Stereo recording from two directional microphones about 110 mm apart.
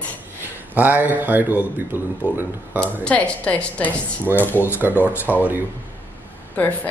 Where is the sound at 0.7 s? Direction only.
15° right (ahead or behind).